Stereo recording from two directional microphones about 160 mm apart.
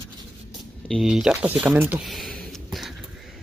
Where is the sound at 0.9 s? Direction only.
Centre (ahead or behind).